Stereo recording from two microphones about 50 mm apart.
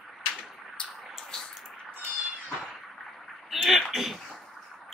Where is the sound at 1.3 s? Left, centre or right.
Centre.